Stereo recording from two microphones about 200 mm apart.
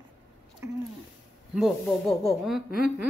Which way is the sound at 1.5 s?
Centre (ahead or behind).